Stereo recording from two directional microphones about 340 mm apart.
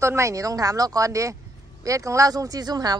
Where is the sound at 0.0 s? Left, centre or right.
Centre.